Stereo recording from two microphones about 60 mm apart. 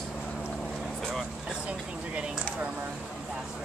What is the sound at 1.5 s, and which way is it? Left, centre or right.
Speech, centre.